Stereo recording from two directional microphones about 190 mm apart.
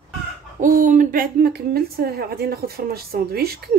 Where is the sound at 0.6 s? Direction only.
45° right (ahead or behind).